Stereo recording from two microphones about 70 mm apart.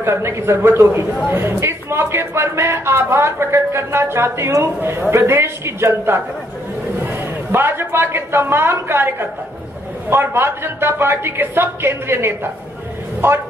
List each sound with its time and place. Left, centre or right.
0.0 s speech: right
4.7 s speech: right
7.5 s speech: right